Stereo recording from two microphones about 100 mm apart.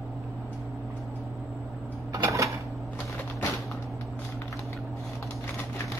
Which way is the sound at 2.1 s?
35° right (ahead or behind).